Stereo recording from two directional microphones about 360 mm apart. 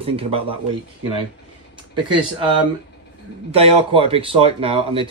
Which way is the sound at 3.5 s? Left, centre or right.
Centre.